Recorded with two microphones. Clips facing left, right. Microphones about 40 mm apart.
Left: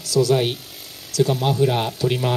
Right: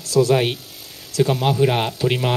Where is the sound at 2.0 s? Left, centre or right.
Right.